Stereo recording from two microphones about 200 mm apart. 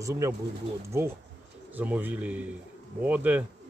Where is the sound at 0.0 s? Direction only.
15° right (ahead or behind).